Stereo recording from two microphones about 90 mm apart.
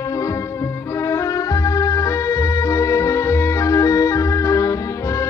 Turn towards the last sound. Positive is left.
turn(degrees=35)  # may be behind; listen again after turning